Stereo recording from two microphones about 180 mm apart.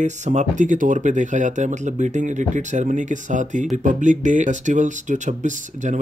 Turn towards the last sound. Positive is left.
turn(degrees=-45)  # may be behind; listen again after turning